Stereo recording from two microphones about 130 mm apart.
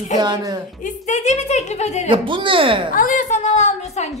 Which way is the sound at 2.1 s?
40° right (ahead or behind).